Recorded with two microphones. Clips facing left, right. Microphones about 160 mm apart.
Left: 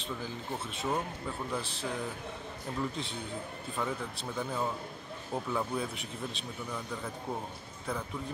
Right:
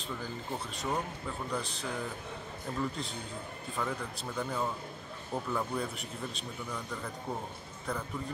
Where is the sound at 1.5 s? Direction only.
Centre (ahead or behind).